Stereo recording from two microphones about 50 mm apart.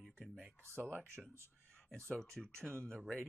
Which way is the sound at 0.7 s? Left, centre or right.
Right.